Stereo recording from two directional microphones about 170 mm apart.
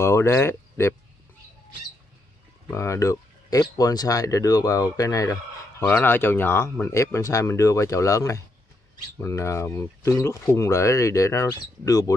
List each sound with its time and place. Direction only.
0.0 s speech: 15° left (ahead or behind)
2.7 s speech: 15° left (ahead or behind)